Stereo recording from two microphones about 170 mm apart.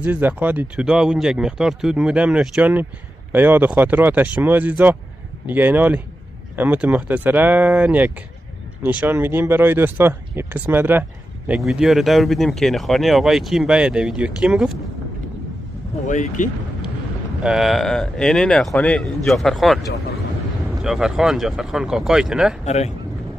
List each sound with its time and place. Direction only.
0.0 s speech: 10° right (ahead or behind)
16.1 s speech: 45° left (ahead or behind)
17.4 s speech: 5° right (ahead or behind)